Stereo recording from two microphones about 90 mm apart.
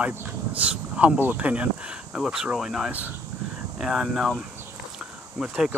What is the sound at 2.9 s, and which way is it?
Speech, 15° right (ahead or behind).